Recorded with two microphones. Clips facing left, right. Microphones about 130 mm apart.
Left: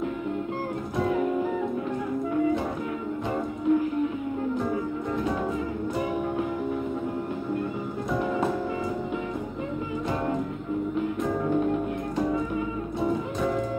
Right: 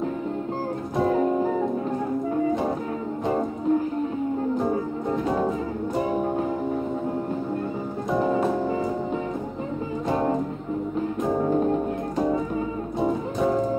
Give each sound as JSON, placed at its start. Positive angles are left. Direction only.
{"t": 0.9, "sound": "music", "side_deg": -35}
{"t": 3.3, "sound": "music", "side_deg": -30}
{"t": 5.9, "sound": "music", "side_deg": -35}
{"t": 11.0, "sound": "music", "side_deg": -30}